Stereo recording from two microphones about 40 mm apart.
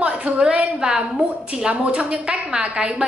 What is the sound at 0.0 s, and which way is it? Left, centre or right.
A woman's voice, right.